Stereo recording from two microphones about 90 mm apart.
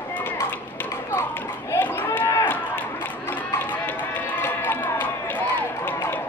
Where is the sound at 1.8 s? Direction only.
20° left (ahead or behind).